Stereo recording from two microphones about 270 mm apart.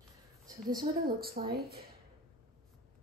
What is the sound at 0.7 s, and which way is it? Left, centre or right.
Speech, right.